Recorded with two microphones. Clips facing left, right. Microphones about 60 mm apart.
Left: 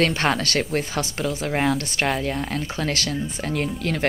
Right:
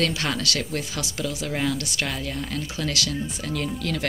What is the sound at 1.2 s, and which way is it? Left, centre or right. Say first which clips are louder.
Speech: left 4 dB; left.